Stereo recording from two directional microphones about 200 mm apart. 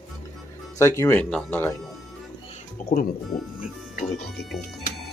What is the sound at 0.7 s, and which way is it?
Speech, 15° left (ahead or behind).